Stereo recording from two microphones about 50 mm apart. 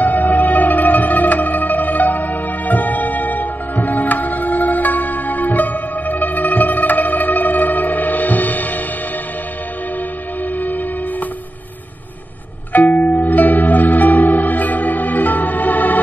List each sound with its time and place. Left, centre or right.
0.0 s music: left
10.6 s music: left
12.7 s music: left